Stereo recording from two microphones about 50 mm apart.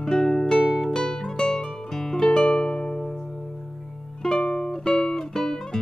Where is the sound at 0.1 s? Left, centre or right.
Centre.